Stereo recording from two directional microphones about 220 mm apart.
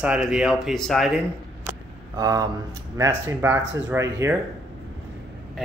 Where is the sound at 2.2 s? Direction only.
15° right (ahead or behind).